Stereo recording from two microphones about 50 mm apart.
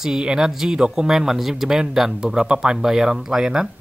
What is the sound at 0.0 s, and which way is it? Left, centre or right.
Speech, centre.